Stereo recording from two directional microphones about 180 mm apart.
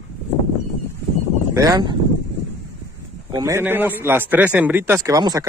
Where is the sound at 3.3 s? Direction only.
20° right (ahead or behind).